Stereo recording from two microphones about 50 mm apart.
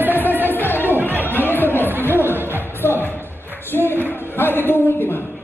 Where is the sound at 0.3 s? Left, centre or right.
Right.